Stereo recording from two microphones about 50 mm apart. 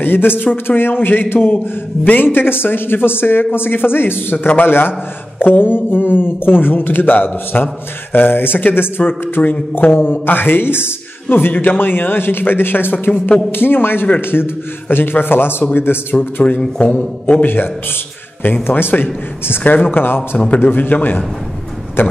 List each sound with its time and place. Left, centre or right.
0.0 s speech: left
9.4 s a man's voice: left
16.4 s a man's voice: left
18.4 s a man's voice: left
20.3 s a man's voice: left